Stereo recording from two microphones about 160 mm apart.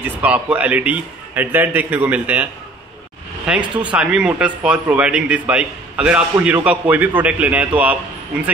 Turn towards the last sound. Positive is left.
turn(degrees=-10)  # may be behind; listen again after turning